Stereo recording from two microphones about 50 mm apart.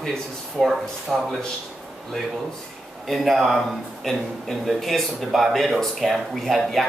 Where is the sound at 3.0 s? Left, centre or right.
Centre.